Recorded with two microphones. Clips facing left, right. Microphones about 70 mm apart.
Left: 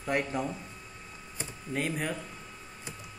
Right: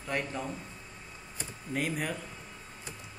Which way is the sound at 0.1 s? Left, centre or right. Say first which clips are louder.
Left 4 dB; centre.